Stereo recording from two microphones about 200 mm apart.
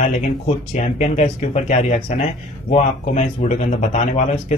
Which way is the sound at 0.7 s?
35° left (ahead or behind).